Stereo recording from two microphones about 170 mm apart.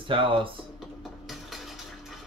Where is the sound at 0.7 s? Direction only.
Centre (ahead or behind).